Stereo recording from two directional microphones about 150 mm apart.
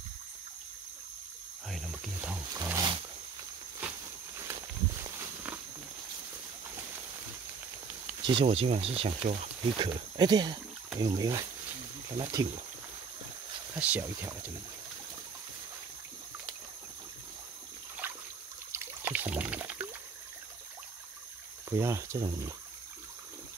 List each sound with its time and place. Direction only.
1.7 s wild animals: centre (ahead or behind)
2.5 s wild animals: 25° right (ahead or behind)
4.5 s walk: 20° right (ahead or behind)
8.2 s speech: 35° right (ahead or behind)
13.7 s speech: 10° right (ahead or behind)
18.0 s trickle: 10° right (ahead or behind)
18.7 s pour: 15° right (ahead or behind)
21.6 s speech: 20° right (ahead or behind)